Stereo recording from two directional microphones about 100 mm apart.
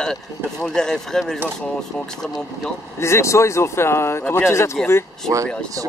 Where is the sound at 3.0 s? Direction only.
30° left (ahead or behind).